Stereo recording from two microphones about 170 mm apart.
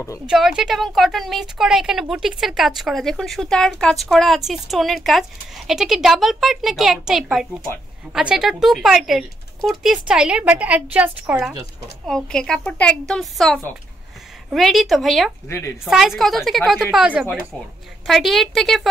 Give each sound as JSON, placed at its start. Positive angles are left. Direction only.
{"t": 0.3, "sound": "a woman's voice", "side_deg": -5}
{"t": 15.4, "sound": "a woman's voice", "side_deg": 15}
{"t": 15.8, "sound": "a woman's voice", "side_deg": -5}